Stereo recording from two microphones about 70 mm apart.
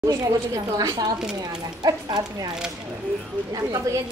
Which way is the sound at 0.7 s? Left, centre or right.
Right.